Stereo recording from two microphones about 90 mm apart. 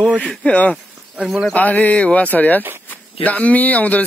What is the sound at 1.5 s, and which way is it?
Speech, 15° left (ahead or behind).